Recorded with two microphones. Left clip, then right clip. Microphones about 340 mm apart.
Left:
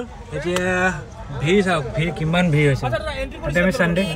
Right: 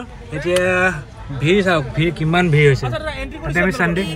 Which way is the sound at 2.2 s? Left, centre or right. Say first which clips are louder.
Right 4 dB; right.